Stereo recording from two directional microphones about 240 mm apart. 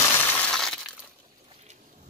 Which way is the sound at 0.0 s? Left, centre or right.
Centre.